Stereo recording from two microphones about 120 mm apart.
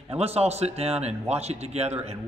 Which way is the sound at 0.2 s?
60° right (ahead or behind).